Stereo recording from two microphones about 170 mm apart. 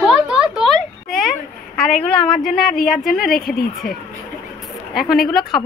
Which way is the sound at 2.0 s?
30° left (ahead or behind).